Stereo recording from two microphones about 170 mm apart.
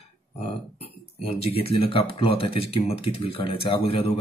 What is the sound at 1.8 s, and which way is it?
Speech, 30° left (ahead or behind).